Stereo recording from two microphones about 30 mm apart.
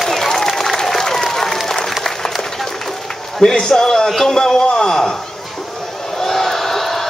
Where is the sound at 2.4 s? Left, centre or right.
Centre.